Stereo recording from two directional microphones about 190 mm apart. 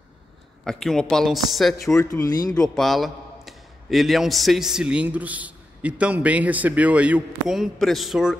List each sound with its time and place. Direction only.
0.7 s a man's voice: centre (ahead or behind)
2.0 s speech: 15° left (ahead or behind)
2.5 s a man's voice: 5° left (ahead or behind)